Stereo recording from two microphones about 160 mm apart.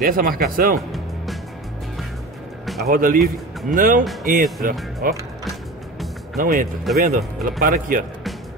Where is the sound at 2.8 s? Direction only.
60° right (ahead or behind).